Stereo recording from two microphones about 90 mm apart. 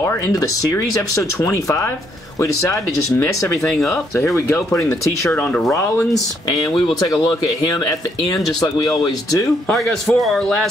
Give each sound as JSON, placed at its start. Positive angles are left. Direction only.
{"t": 0.0, "sound": "speech", "side_deg": 40}
{"t": 5.3, "sound": "speech", "side_deg": 20}
{"t": 8.5, "sound": "speech", "side_deg": 50}
{"t": 9.7, "sound": "a man's voice", "side_deg": 5}